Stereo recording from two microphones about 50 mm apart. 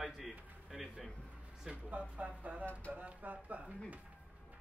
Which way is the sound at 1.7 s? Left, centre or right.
Right.